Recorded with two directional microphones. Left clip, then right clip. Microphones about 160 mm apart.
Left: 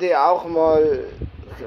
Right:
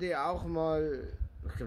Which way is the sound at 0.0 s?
10° right (ahead or behind).